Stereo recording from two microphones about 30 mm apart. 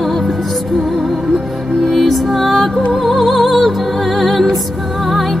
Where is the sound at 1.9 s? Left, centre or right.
Centre.